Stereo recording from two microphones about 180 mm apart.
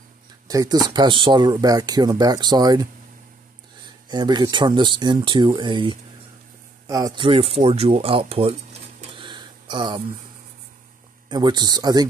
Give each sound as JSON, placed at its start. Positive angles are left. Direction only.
{"t": 0.5, "sound": "speech", "side_deg": -20}
{"t": 4.1, "sound": "speech", "side_deg": -25}
{"t": 9.1, "sound": "a sound", "side_deg": -25}
{"t": 11.2, "sound": "speech", "side_deg": -25}